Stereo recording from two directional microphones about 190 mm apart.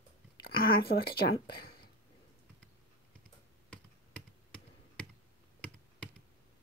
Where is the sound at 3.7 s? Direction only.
5° left (ahead or behind).